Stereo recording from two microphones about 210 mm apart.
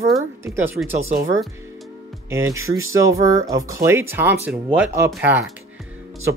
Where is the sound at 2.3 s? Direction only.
15° right (ahead or behind).